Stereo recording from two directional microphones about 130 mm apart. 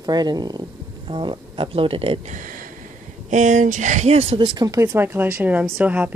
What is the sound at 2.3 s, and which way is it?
Speech, 85° right.